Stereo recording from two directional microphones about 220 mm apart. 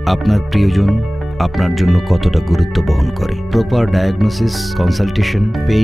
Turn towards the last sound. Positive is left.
turn(degrees=0)  # may be behind; listen again after turning